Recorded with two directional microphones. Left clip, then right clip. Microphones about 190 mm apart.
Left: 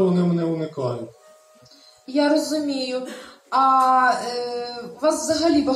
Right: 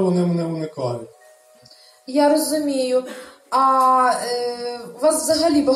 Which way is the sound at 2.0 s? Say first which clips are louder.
Right 3 dB; 40° right (ahead or behind).